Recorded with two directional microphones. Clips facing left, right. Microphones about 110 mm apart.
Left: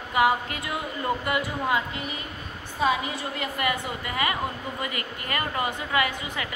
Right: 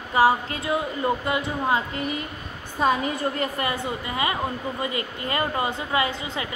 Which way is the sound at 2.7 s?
45° right (ahead or behind).